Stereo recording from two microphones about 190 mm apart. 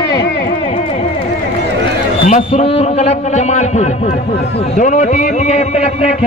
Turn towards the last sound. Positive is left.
turn(degrees=40)  # may be behind; listen again after turning